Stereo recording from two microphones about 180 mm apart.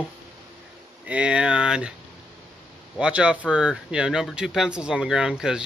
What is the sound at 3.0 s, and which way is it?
Speech, 5° right (ahead or behind).